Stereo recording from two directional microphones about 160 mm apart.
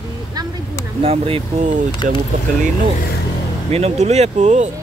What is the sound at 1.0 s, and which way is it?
Speech, 35° right (ahead or behind).